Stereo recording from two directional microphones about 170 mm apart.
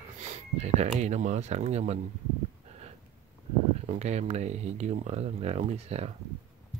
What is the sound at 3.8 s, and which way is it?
Speech, 40° right (ahead or behind).